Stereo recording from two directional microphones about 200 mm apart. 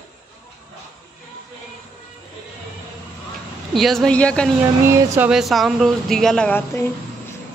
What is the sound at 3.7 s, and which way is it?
Speech, centre (ahead or behind).